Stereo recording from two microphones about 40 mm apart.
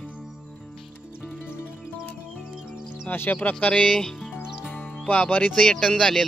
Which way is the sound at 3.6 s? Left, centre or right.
Left.